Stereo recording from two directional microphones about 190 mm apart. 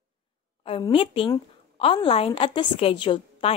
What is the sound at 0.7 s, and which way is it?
A woman's voice, 30° left (ahead or behind).